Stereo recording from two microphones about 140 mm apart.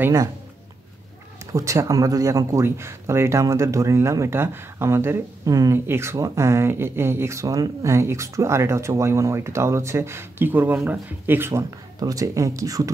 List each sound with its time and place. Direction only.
0.0 s speech: 20° right (ahead or behind)
1.5 s speech: 20° right (ahead or behind)